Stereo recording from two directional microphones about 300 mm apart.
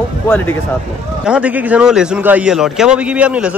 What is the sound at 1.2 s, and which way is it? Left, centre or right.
A man's voice, centre.